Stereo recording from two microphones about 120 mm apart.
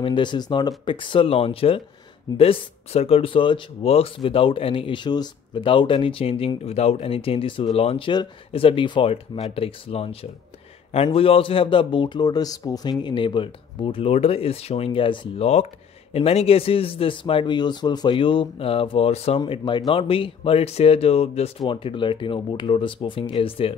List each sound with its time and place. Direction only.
0.0 s speech: 40° left (ahead or behind)
9.1 s speech: 55° left (ahead or behind); by 12.9 s 30° left (ahead or behind)
13.0 s speech: 40° left (ahead or behind)